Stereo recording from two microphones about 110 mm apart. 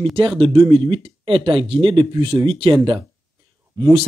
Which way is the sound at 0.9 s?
50° right (ahead or behind).